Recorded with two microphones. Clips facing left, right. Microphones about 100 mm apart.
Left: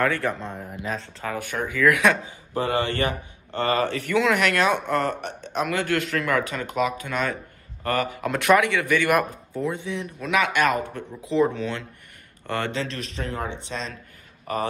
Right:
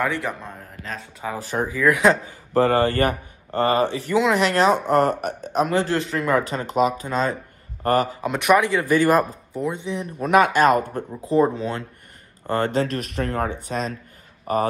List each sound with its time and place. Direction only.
0.0 s a man's voice: 15° right (ahead or behind)
0.6 s speech: 5° left (ahead or behind)
1.3 s speech: 30° right (ahead or behind)
2.2 s speech: 45° right (ahead or behind)
3.5 s speech: 30° right (ahead or behind)
4.8 s a man's voice: 40° right (ahead or behind); by 6.4 s 25° right (ahead or behind)
6.4 s a man's voice: 35° right (ahead or behind)
8.2 s speech: 20° right (ahead or behind)
8.6 s a man's voice: 35° right (ahead or behind)
9.5 s speech: 20° right (ahead or behind)
10.1 s a man's voice: 45° right (ahead or behind)